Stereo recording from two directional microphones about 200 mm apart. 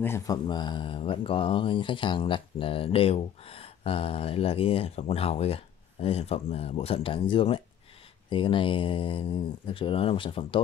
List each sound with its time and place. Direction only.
0.0 s speech: 15° left (ahead or behind)